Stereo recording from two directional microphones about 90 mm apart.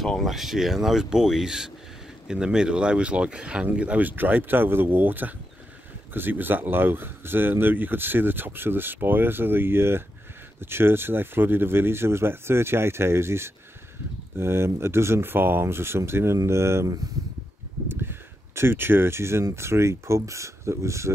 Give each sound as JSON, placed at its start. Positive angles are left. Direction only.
{"t": 0.0, "sound": "speech", "side_deg": 0}